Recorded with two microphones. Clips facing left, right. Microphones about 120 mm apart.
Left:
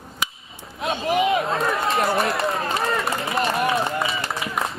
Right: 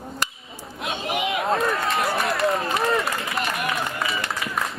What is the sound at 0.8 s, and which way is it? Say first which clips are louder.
Speech: left 5 dB; 30° left (ahead or behind).